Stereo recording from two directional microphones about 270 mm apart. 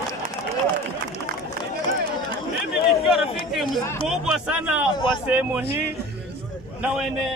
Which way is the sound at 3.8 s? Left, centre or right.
Centre.